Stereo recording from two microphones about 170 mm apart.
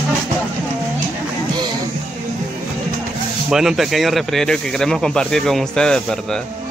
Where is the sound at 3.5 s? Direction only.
Centre (ahead or behind).